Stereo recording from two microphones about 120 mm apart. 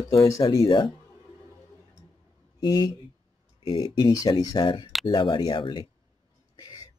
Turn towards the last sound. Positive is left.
turn(degrees=30)  # may be behind; listen again after turning